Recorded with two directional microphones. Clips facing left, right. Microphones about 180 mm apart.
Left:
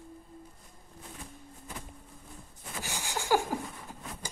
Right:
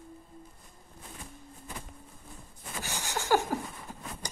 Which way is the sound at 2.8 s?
15° left (ahead or behind).